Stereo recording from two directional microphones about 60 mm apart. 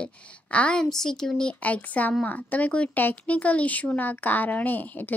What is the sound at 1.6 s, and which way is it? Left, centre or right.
A woman's voice, left.